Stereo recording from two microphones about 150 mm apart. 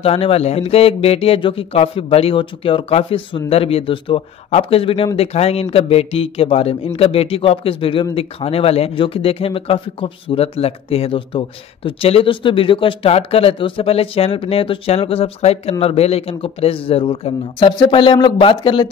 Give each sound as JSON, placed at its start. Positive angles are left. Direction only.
{"t": 0.0, "sound": "speech", "side_deg": 40}